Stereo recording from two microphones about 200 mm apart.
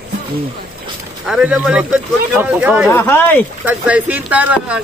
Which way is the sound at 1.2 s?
5° right (ahead or behind).